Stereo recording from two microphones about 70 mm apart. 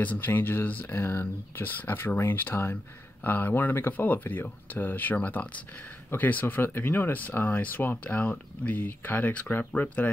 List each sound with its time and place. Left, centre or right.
0.0 s speech: left